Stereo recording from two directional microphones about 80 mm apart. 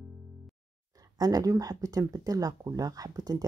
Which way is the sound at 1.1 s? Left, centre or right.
Right.